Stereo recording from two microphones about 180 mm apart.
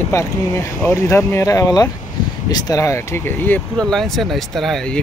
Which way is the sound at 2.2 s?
25° left (ahead or behind).